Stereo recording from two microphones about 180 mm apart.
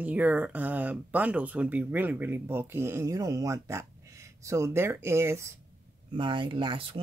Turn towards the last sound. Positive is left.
turn(degrees=-30)  # may be behind; listen again after turning